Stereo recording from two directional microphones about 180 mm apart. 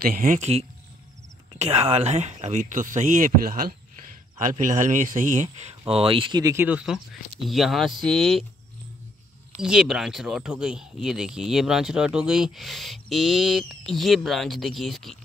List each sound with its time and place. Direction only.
0.1 s speech: 50° right (ahead or behind); by 8.5 s centre (ahead or behind)
9.6 s speech: 5° right (ahead or behind)